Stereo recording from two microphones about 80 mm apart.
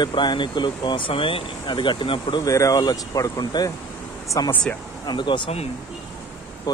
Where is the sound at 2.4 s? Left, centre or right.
Left.